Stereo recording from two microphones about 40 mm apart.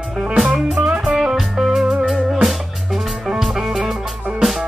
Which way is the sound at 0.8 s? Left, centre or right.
Right.